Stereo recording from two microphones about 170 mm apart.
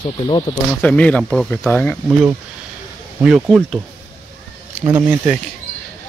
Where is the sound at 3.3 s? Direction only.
5° right (ahead or behind).